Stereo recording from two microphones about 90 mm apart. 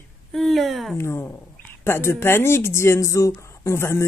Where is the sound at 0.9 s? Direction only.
25° left (ahead or behind).